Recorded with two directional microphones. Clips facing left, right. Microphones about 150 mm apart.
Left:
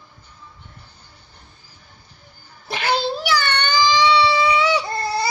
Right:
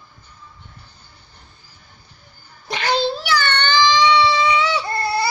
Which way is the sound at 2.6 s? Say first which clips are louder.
Right 1 dB; 5° left (ahead or behind).